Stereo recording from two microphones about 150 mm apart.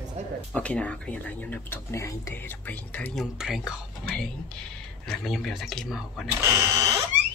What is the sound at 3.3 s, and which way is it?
Speech, 5° right (ahead or behind).